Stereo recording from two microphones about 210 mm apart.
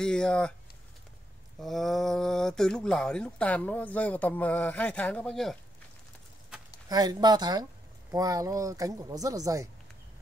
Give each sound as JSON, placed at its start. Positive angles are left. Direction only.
{"t": 0.0, "sound": "speech", "side_deg": 5}
{"t": 1.6, "sound": "speech", "side_deg": 0}
{"t": 6.9, "sound": "speech", "side_deg": -20}